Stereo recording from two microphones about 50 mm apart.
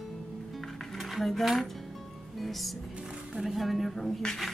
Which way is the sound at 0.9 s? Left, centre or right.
Centre.